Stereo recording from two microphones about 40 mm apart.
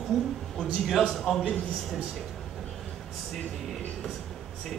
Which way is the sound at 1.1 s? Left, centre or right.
Centre.